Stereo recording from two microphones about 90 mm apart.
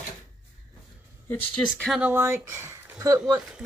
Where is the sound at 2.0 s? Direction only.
25° right (ahead or behind).